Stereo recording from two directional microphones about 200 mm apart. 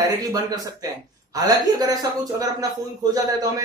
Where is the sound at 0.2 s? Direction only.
20° right (ahead or behind).